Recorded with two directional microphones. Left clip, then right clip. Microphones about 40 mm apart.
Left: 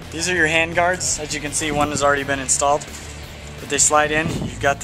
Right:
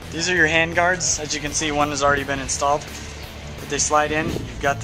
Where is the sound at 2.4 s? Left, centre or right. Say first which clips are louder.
Left 2 dB; left.